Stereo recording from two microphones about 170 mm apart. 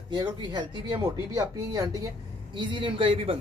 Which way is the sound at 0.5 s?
25° right (ahead or behind).